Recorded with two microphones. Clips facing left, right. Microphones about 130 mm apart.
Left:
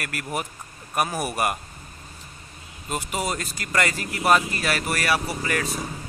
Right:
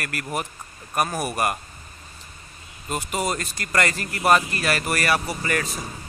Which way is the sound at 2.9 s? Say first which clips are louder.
Right 2 dB; 5° left (ahead or behind).